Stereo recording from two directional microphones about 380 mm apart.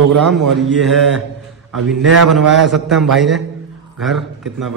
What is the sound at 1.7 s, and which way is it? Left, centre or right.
Speech, right.